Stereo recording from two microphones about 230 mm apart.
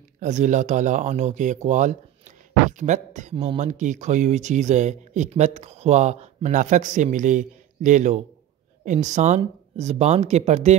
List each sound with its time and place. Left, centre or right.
0.2 s speech: right